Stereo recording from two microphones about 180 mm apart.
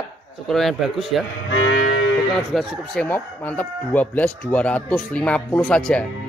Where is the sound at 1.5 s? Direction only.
85° left.